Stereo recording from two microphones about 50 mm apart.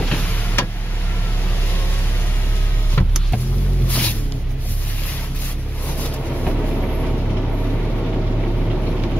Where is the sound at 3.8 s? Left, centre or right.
Left.